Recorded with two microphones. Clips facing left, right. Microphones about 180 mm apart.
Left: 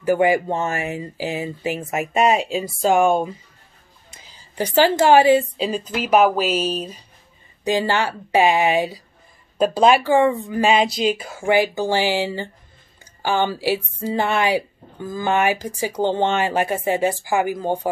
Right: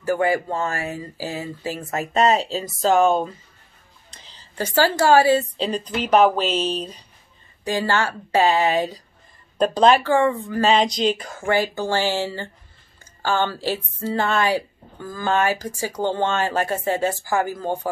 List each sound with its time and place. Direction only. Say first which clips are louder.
0.0 s a woman's voice: left 3 dB; 15° left (ahead or behind)